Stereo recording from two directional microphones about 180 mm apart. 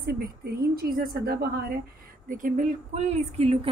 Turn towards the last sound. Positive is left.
turn(degrees=-35)  # may be behind; listen again after turning